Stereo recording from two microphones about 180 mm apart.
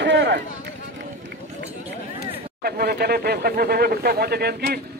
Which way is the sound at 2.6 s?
60° right (ahead or behind).